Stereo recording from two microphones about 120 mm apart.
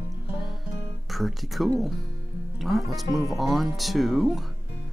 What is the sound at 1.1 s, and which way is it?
Speech, centre (ahead or behind).